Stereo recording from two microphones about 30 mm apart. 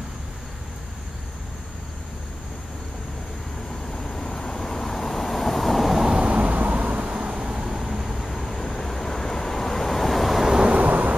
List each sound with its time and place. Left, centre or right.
3.9 s vehicle: centre
6.2 s a sound: right
7.0 s vehicle: right
7.2 s vehicle: right; by 10.4 s centre
10.8 s vehicle: right